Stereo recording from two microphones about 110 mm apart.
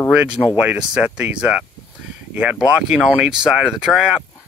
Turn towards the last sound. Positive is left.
turn(degrees=-5)  # may be behind; listen again after turning